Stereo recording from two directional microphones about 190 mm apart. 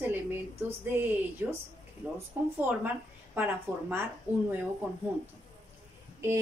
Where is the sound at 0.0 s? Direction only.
10° right (ahead or behind).